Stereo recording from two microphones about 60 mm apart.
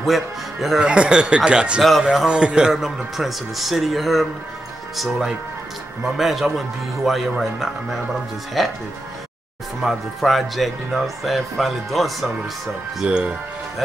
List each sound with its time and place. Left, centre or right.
0.0 s speech: centre
0.7 s speech: centre
1.8 s speech: centre
2.2 s speech: centre
2.7 s speech: centre
9.8 s speech: centre
13.0 s speech: centre